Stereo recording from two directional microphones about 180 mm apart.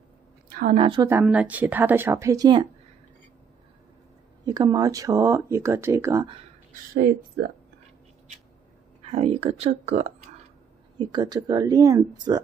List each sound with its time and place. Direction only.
0.5 s a sound: 50° right (ahead or behind)
0.7 s a woman's voice: 25° right (ahead or behind)
1.2 s speech: 5° right (ahead or behind); by 2.7 s 25° right (ahead or behind)
4.5 s speech: 20° right (ahead or behind)
6.7 s speech: 55° right (ahead or behind)
9.0 s speech: 35° right (ahead or behind)
11.0 s a woman's voice: 25° right (ahead or behind)